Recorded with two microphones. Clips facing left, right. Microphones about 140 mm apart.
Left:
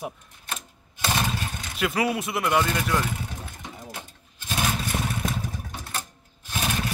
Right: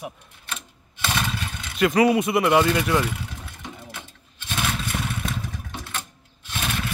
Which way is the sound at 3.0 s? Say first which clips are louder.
Right 1 dB; 40° left (ahead or behind).